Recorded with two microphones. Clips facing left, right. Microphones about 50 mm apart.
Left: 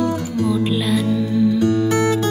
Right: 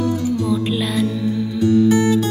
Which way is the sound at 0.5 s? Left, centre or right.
Centre.